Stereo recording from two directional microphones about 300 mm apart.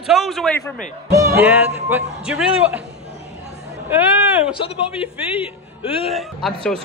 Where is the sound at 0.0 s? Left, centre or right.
Centre.